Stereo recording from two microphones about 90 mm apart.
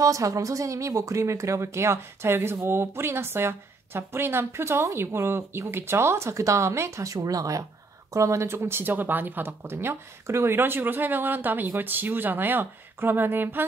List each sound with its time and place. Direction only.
0.0 s speech: 35° right (ahead or behind)